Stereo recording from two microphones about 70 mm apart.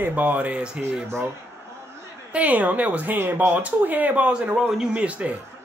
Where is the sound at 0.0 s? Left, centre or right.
Right.